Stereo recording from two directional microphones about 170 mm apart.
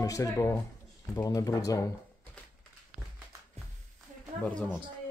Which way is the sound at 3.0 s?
10° right (ahead or behind).